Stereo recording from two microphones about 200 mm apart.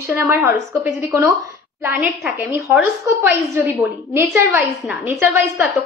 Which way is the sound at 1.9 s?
5° right (ahead or behind).